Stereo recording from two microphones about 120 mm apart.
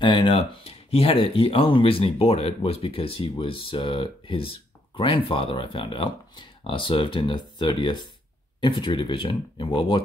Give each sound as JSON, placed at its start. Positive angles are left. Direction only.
{"t": 0.0, "sound": "speech", "side_deg": 45}